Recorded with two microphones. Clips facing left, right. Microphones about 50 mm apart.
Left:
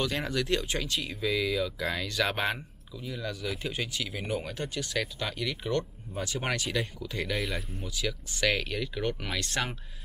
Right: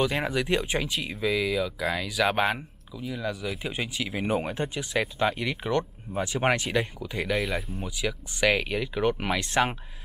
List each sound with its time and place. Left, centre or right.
0.0 s speech: centre